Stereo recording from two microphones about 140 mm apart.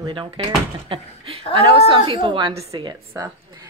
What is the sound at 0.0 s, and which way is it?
Speech, 35° right (ahead or behind).